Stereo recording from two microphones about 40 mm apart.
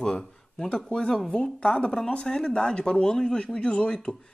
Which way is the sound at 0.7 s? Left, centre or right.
Left.